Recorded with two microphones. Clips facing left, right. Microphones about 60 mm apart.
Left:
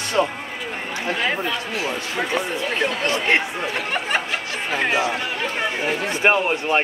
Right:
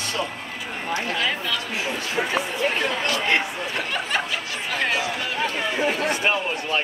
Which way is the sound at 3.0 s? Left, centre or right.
Left.